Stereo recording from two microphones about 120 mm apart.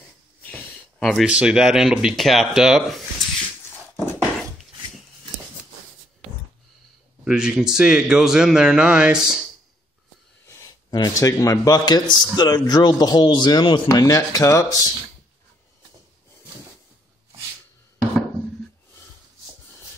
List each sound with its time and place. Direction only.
0.4 s a sound: 10° left (ahead or behind)
1.2 s speech: 10° right (ahead or behind)
7.2 s a man's voice: 5° right (ahead or behind)
10.9 s a man's voice: 30° left (ahead or behind)